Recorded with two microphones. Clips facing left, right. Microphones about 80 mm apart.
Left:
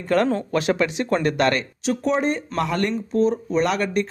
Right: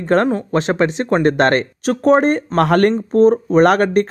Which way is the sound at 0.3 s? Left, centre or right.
Right.